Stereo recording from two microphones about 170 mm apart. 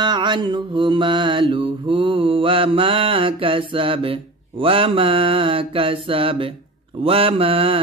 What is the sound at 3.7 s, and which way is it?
Mantra, 30° right (ahead or behind).